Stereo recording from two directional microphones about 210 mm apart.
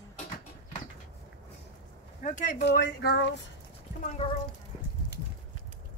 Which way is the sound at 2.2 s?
40° left (ahead or behind).